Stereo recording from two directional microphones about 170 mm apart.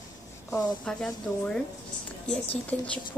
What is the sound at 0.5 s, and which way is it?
A woman's voice, 5° left (ahead or behind).